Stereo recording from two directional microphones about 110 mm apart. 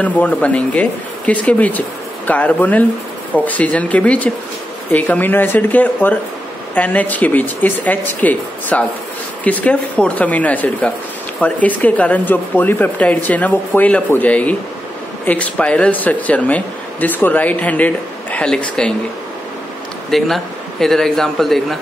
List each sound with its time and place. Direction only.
0.0 s speech: 15° left (ahead or behind)
20.1 s a man's voice: centre (ahead or behind)